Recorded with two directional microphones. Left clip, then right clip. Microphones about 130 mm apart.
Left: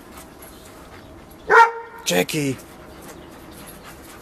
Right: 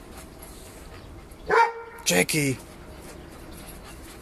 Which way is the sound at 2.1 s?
Centre (ahead or behind).